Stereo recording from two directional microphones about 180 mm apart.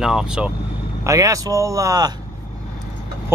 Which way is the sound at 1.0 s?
20° right (ahead or behind).